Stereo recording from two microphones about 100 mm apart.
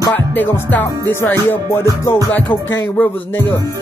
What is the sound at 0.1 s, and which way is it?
Music, 15° left (ahead or behind).